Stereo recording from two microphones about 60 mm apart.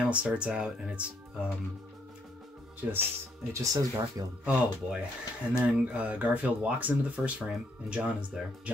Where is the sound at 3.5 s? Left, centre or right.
Right.